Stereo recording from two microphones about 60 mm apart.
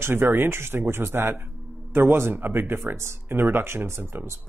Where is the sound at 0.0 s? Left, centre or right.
Right.